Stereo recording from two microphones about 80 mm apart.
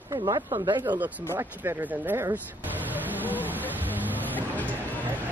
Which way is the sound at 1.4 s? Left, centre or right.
Right.